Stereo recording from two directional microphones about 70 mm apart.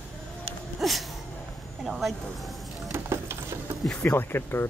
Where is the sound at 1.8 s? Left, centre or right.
Centre.